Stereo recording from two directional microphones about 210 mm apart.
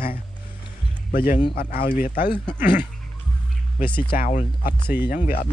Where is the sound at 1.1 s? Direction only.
40° left (ahead or behind).